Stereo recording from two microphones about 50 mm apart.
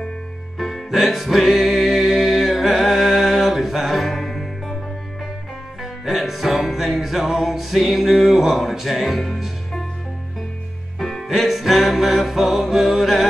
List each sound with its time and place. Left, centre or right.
0.6 s music: centre
5.8 s music: centre
11.0 s music: centre